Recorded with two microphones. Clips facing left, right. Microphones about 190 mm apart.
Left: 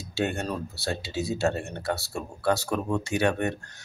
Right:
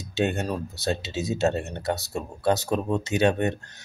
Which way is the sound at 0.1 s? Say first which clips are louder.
Right 3 dB; 20° right (ahead or behind).